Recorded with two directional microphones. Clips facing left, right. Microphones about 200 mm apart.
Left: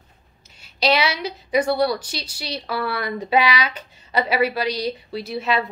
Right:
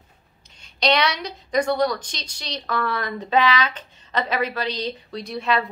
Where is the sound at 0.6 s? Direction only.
5° left (ahead or behind).